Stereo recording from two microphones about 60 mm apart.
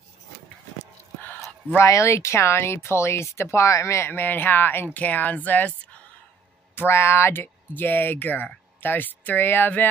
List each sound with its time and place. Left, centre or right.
1.9 s speech: left
4.1 s speech: left
6.7 s speech: left